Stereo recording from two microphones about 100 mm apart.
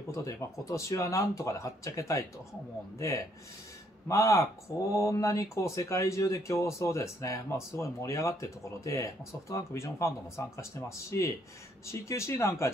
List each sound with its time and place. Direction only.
0.1 s speech: 30° left (ahead or behind)
4.1 s speech: 35° left (ahead or behind)